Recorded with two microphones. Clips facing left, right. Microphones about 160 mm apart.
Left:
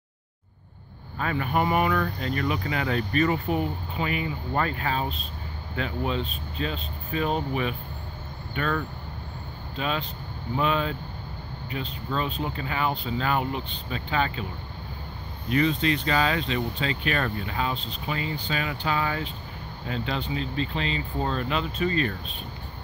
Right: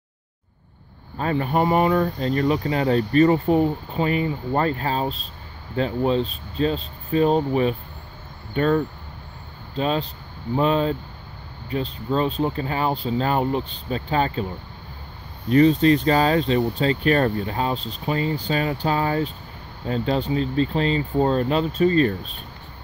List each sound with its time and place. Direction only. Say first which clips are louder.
1.1 s speech: right 4 dB; 35° right (ahead or behind)
15.5 s speech: right 8 dB; 40° right (ahead or behind)